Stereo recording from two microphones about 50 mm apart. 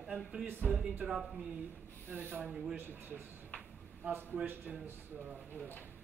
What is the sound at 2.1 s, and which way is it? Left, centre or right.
Speech, right.